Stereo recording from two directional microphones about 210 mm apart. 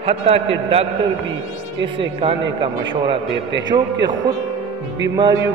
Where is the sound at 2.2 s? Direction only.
25° right (ahead or behind).